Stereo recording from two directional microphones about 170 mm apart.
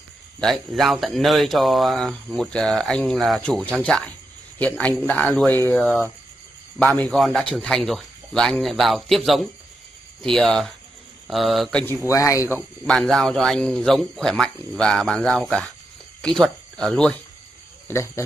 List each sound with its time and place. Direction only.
0.4 s speech: centre (ahead or behind); by 12.6 s 20° left (ahead or behind)
12.8 s speech: 5° left (ahead or behind)
17.8 s speech: 15° left (ahead or behind)